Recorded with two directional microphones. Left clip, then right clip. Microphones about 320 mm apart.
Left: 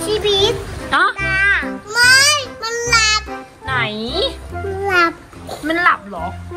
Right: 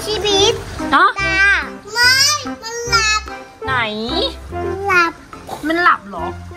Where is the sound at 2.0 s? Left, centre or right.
Left.